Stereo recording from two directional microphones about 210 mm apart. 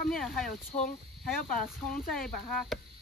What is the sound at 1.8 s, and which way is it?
Speech, 5° left (ahead or behind).